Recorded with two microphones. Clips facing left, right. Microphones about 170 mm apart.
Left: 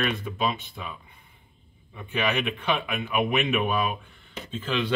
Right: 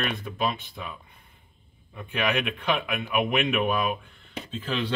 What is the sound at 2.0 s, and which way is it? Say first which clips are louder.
Speech: even; centre (ahead or behind).